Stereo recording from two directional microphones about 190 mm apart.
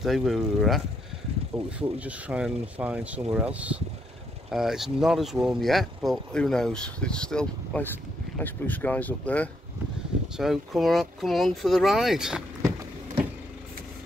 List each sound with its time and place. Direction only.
0.0 s speech: centre (ahead or behind)